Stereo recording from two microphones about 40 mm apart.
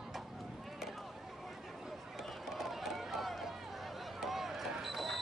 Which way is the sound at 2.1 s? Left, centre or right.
Centre.